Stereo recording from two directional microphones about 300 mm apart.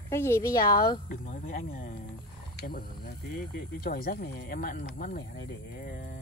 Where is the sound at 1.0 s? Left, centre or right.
Left.